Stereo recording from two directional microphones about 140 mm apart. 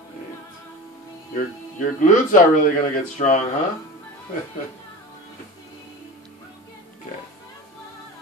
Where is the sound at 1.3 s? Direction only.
70° left (ahead or behind).